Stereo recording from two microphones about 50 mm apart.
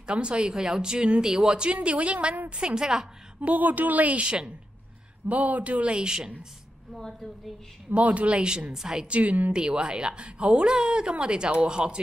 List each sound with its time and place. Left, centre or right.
0.0 s a woman's voice: right
2.5 s a woman's voice: centre
3.3 s a woman's voice: right
5.3 s a woman's voice: right
7.0 s a woman's voice: centre
7.9 s a woman's voice: right
9.1 s a woman's voice: right